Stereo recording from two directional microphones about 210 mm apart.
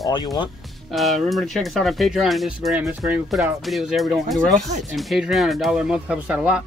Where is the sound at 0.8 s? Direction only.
Centre (ahead or behind).